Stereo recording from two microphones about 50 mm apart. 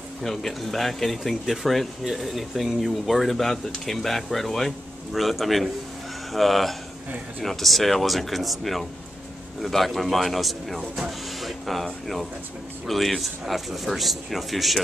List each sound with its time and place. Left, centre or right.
0.2 s speech: centre